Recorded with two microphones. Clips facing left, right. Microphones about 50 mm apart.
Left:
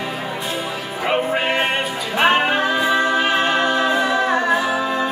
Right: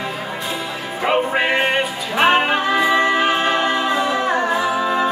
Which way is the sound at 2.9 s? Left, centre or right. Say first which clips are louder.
Right 1 dB; right.